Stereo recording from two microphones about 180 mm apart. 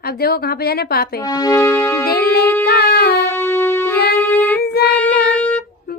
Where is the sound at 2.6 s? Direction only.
60° left (ahead or behind).